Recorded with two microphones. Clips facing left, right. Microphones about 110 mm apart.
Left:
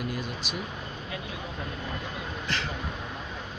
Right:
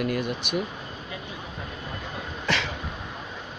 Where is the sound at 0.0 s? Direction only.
60° right (ahead or behind).